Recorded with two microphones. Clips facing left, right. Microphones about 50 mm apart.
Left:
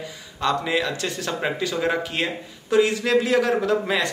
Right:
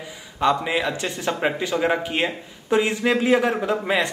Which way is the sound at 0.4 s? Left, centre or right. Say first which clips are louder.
Right 2 dB; centre.